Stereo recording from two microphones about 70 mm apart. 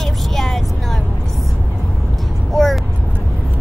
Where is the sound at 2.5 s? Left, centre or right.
Centre.